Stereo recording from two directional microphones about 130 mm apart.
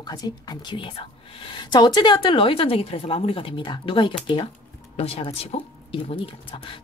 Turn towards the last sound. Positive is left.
turn(degrees=45)  # may be behind; listen again after turning